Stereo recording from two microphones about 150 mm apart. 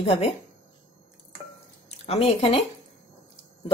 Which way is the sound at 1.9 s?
40° left (ahead or behind).